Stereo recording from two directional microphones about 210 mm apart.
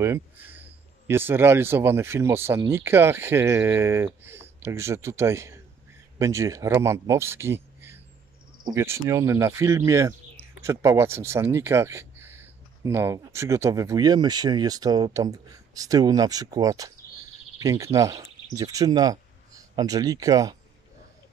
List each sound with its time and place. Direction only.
1.0 s speech: 10° right (ahead or behind)